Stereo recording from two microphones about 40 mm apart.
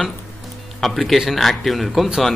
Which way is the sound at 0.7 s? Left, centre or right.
Centre.